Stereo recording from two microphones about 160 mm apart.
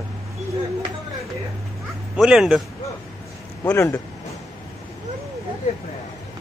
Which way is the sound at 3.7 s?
20° left (ahead or behind).